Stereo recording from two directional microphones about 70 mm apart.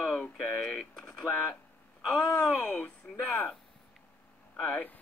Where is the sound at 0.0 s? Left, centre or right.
Left.